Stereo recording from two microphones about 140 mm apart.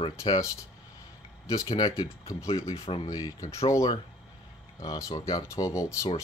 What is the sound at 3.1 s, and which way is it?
Speech, 25° left (ahead or behind).